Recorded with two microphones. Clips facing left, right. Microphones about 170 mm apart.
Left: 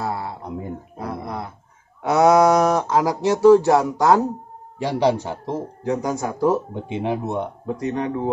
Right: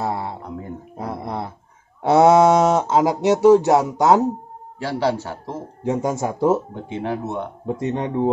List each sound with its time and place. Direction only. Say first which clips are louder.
0.0 s a sound: right 2 dB; 25° right (ahead or behind)
2.0 s speech: right 2 dB; 25° right (ahead or behind)
4.7 s speech: left 2 dB; 15° left (ahead or behind)
5.9 s speech: right 2 dB; 25° right (ahead or behind)
6.7 s speech: left 2 dB; 15° left (ahead or behind)
7.6 s speech: right 3 dB; 25° right (ahead or behind)